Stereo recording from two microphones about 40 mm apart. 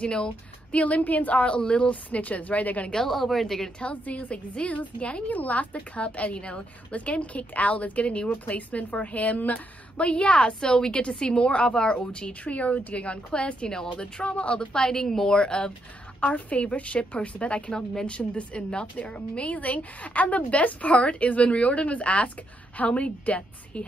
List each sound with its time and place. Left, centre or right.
0.0 s a woman's voice: left
1.9 s a woman's voice: left
3.1 s a woman's voice: centre
3.8 s a woman's voice: left
16.2 s a woman's voice: left